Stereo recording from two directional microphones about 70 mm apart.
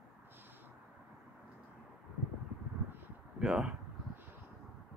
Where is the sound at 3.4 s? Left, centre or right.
Centre.